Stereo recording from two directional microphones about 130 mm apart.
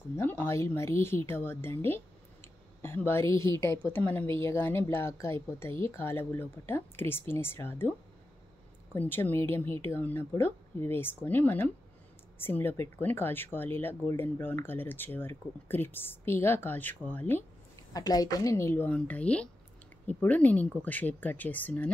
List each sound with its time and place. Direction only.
0.1 s a woman's voice: 15° left (ahead or behind)
8.9 s a woman's voice: 15° left (ahead or behind)
17.9 s a woman's voice: 30° left (ahead or behind); by 21.9 s 10° left (ahead or behind)